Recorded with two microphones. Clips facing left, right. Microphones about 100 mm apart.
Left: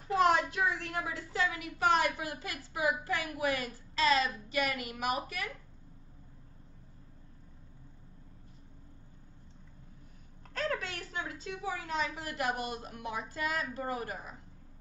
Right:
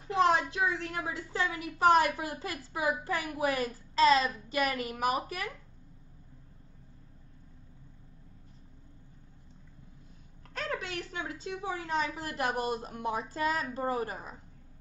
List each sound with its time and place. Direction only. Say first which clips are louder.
0.2 s a woman's voice: right 2 dB; 30° right (ahead or behind)
10.5 s a woman's voice: left 1 dB; 20° right (ahead or behind)